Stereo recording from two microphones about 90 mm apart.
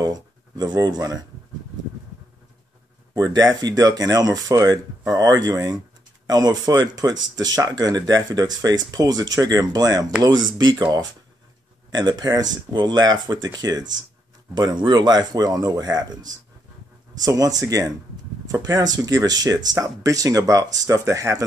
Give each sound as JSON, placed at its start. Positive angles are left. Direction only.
{"t": 0.0, "sound": "speech", "side_deg": -50}
{"t": 3.2, "sound": "speech", "side_deg": -45}